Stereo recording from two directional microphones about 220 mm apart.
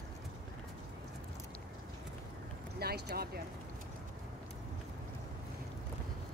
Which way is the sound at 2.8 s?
45° right (ahead or behind).